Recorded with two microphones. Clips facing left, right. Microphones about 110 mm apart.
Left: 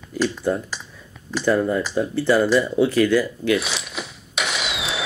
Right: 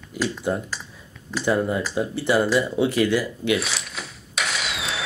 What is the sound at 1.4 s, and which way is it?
Speech, 20° right (ahead or behind).